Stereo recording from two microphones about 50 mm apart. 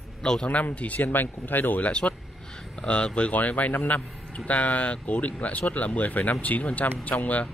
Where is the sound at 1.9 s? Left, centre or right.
Left.